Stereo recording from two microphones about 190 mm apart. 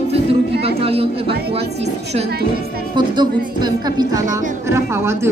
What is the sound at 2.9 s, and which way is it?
Speech, 25° right (ahead or behind).